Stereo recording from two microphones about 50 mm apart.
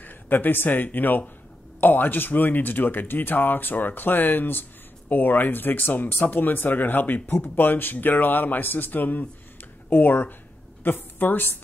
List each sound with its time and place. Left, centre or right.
0.0 s a woman's voice: left